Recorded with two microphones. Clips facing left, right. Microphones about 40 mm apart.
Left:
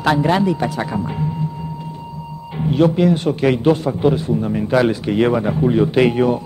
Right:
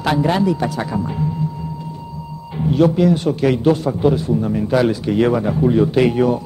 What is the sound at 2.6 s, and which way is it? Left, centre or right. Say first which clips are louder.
A man's voice: even; left.